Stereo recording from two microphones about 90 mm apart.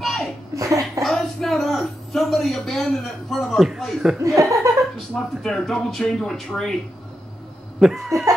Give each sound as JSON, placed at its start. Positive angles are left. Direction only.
{"t": 0.0, "sound": "laughter", "side_deg": 0}
{"t": 0.6, "sound": "a sound", "side_deg": -40}
{"t": 1.0, "sound": "a sound", "side_deg": 0}
{"t": 4.4, "sound": "laughter", "side_deg": -35}
{"t": 5.1, "sound": "speech", "side_deg": 5}
{"t": 7.8, "sound": "speech", "side_deg": -5}